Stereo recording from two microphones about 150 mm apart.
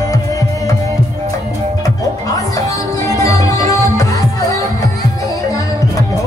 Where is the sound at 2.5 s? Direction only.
25° left (ahead or behind).